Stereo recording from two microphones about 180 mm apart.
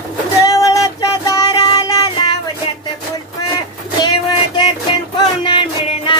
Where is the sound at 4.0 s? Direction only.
25° left (ahead or behind).